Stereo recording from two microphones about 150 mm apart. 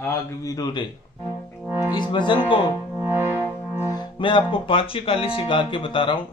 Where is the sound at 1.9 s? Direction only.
30° left (ahead or behind).